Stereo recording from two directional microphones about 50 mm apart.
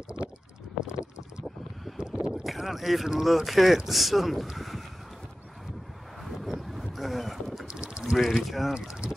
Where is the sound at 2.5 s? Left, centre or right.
Centre.